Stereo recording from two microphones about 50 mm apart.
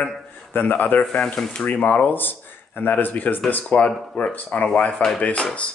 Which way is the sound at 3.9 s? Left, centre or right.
Centre.